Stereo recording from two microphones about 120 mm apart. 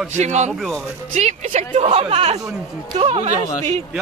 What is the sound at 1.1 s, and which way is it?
A woman's voice, 70° right (ahead or behind).